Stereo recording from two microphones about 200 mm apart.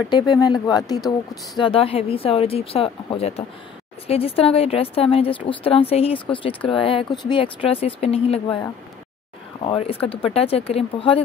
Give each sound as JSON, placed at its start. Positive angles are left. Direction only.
{"t": 0.1, "sound": "speech", "side_deg": 20}
{"t": 9.7, "sound": "speech", "side_deg": 25}